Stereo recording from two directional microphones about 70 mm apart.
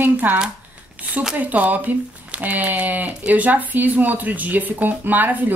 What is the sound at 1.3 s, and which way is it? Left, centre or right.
Speech, right.